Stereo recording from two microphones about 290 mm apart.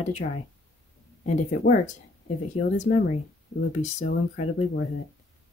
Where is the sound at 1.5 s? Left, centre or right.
Left.